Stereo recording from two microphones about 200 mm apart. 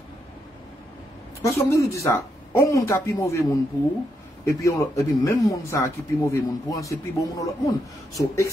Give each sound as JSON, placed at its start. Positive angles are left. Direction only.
{"t": 1.4, "sound": "speech", "side_deg": 15}